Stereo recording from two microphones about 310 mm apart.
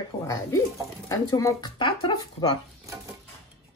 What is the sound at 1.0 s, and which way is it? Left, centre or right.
Speech, centre.